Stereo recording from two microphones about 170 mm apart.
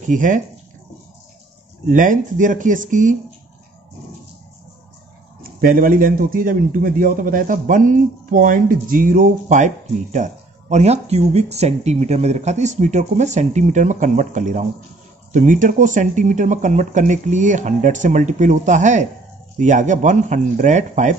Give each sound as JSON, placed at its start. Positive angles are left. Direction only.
{"t": 0.0, "sound": "speech", "side_deg": -50}
{"t": 1.9, "sound": "speech", "side_deg": -50}
{"t": 5.4, "sound": "a man's voice", "side_deg": -55}